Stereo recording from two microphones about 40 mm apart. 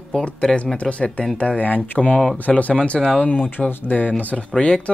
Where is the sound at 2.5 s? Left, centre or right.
Left.